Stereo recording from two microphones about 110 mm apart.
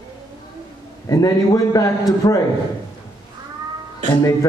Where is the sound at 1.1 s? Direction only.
35° left (ahead or behind).